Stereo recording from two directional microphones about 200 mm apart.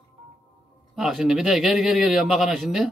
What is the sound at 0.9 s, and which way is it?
A man's voice, centre (ahead or behind).